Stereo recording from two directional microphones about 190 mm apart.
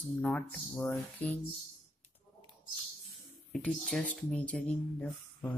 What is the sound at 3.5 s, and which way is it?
Speech, 5° left (ahead or behind).